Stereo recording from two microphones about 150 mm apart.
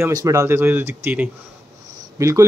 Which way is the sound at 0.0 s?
20° right (ahead or behind).